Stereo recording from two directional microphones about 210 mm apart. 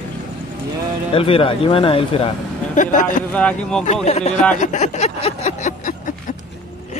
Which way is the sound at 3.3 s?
5° left (ahead or behind).